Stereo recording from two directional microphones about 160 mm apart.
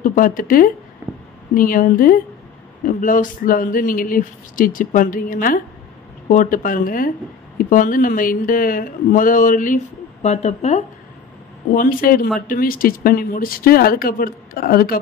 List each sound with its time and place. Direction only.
0.0 s speech: 60° left (ahead or behind)
10.2 s speech: 45° left (ahead or behind)
11.7 s speech: 60° left (ahead or behind)